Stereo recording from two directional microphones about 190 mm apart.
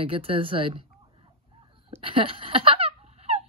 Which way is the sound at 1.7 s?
30° right (ahead or behind).